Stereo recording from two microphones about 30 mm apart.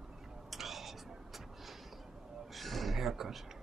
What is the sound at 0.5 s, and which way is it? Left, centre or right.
Vehicle, centre.